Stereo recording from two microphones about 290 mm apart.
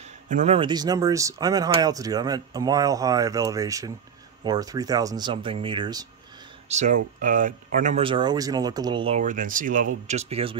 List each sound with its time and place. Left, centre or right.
0.0 s speech: right
6.7 s speech: right